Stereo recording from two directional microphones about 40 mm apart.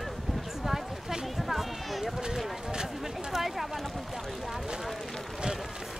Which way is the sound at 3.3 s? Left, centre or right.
Centre.